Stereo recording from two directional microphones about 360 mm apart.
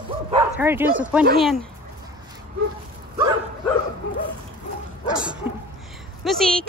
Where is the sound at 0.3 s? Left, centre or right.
Centre.